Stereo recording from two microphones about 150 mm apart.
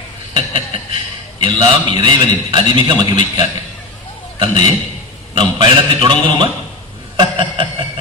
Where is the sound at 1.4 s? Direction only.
35° right (ahead or behind).